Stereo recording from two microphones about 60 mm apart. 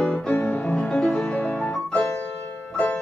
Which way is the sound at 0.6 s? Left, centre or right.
Centre.